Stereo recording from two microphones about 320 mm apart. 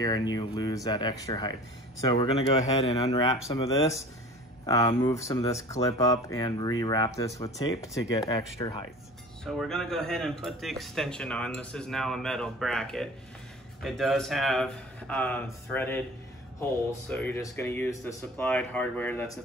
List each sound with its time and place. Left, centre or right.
0.0 s speech: centre
17.1 s speech: centre